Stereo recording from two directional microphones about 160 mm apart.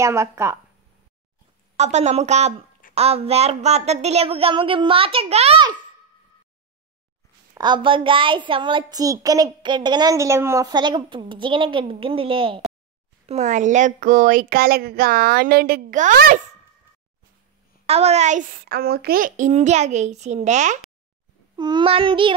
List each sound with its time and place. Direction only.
0.0 s speech: 15° right (ahead or behind)
1.8 s a child's voice: 45° right (ahead or behind)
7.5 s a child's voice: 30° right (ahead or behind)
13.3 s speech: 50° right (ahead or behind)
17.8 s a child's voice: 40° right (ahead or behind)
18.6 s a child's voice: 75° right (ahead or behind); by 20.8 s 50° right (ahead or behind)
21.5 s a child's voice: 25° right (ahead or behind)